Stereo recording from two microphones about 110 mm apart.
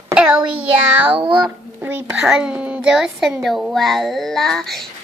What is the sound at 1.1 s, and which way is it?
Speech, 50° right (ahead or behind).